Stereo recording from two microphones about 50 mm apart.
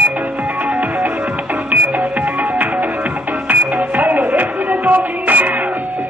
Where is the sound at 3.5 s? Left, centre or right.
Right.